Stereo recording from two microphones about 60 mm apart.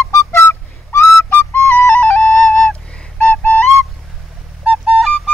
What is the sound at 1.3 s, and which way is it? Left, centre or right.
Flute, left.